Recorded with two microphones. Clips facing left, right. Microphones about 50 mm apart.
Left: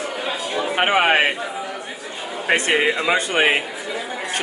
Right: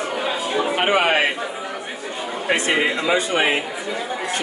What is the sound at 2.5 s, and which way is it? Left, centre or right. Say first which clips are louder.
Speech: left 2 dB; centre.